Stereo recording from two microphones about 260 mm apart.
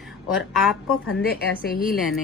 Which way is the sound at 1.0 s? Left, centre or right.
Left.